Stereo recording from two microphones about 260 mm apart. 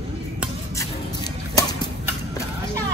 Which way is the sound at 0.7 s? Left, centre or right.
Centre.